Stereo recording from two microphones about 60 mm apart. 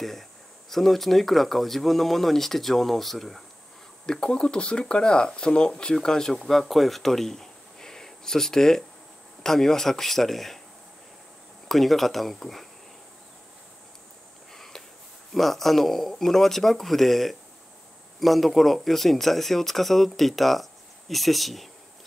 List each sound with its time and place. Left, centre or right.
0.7 s speech: centre
11.7 s speech: centre
14.5 s a sound: centre
15.3 s speech: centre